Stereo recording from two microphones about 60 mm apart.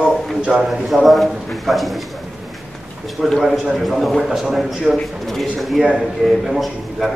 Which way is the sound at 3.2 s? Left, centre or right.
Centre.